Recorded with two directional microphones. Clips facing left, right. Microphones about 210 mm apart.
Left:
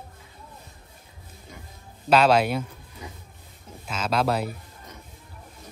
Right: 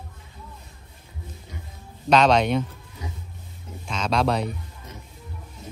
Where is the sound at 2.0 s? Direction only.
5° left (ahead or behind).